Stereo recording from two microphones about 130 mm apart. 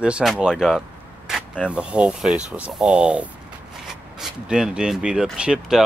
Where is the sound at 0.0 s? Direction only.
5° right (ahead or behind).